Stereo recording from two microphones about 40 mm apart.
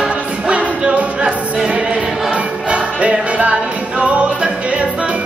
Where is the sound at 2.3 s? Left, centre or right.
Right.